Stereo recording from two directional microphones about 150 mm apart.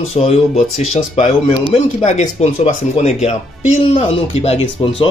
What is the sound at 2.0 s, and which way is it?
Speech, 50° left (ahead or behind).